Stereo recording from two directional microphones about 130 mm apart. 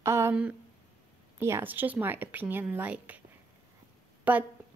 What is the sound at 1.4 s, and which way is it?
A woman's voice, 20° right (ahead or behind).